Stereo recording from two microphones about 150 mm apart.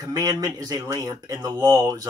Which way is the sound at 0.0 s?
25° right (ahead or behind).